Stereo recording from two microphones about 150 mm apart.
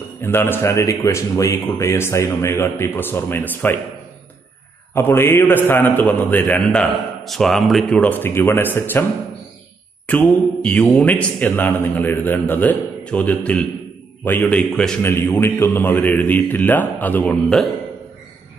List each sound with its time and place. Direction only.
0.2 s a man's voice: 15° left (ahead or behind)
4.9 s a man's voice: 15° left (ahead or behind)
10.0 s a man's voice: 10° left (ahead or behind)